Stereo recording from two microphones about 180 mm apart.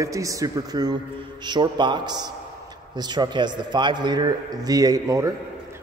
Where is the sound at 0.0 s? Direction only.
20° right (ahead or behind).